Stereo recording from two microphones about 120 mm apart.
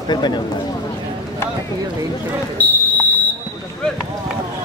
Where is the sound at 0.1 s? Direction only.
35° left (ahead or behind).